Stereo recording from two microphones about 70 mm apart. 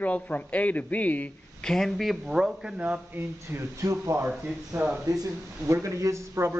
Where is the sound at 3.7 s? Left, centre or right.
Right.